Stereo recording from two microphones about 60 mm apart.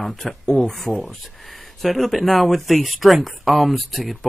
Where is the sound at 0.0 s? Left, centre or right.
Centre.